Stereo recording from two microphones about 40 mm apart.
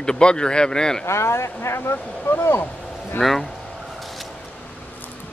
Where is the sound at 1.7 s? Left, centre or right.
Left.